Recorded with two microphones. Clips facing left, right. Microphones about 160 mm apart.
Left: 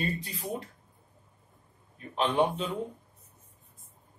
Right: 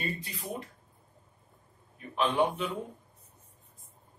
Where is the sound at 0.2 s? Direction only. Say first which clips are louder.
Left 3 dB; 35° left (ahead or behind).